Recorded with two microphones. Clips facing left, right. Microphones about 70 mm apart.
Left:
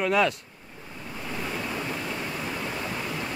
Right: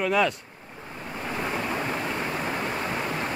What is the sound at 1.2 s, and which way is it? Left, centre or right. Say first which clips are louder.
Waves: right 3 dB; right.